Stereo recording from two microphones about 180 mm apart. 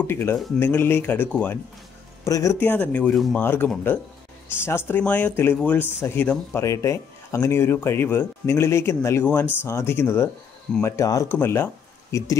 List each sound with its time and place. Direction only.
0.0 s speech: 10° left (ahead or behind)